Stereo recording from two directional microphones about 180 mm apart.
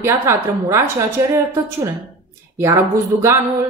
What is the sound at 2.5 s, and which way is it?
Speech, 15° right (ahead or behind).